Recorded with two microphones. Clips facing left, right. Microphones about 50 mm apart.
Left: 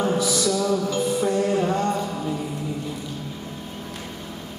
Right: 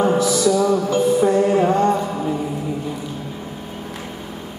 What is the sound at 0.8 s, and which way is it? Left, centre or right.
Music, right.